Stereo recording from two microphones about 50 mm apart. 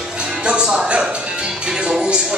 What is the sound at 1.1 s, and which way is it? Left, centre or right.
Speech, centre.